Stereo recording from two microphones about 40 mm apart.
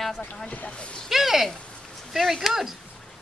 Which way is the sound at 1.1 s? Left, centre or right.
Centre.